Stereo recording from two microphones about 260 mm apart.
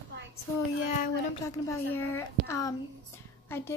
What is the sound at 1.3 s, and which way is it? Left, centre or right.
A woman's voice, centre.